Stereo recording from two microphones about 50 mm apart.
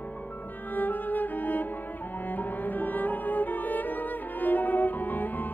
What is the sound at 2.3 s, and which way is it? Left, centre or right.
Music, left.